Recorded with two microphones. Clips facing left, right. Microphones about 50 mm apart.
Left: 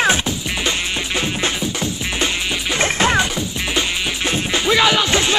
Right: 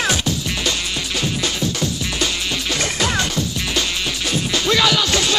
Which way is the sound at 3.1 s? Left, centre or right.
Centre.